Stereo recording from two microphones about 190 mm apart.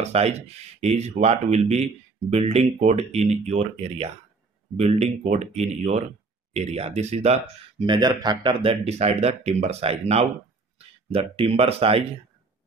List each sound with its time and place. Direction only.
0.0 s speech: 35° right (ahead or behind)
7.8 s speech: 25° right (ahead or behind)